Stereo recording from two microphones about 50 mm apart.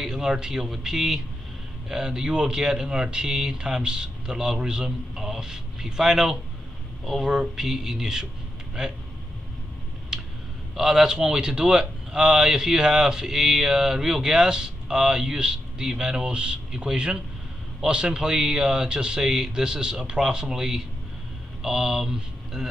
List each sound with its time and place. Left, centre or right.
0.0 s a man's voice: centre
10.1 s a sound: centre
10.8 s a man's voice: centre